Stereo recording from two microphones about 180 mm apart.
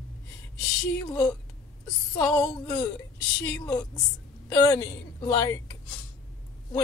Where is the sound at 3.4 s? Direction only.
15° left (ahead or behind).